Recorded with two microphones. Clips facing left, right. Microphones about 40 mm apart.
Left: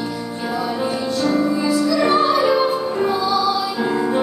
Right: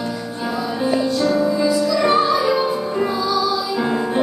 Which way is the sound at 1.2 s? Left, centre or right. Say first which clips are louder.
Left 2 dB; centre.